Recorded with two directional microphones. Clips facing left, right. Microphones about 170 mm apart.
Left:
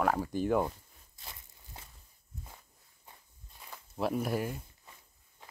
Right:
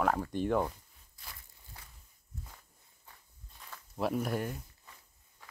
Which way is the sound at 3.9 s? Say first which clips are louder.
Left 1 dB; centre (ahead or behind).